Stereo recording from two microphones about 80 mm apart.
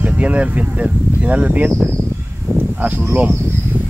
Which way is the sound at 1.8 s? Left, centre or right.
Right.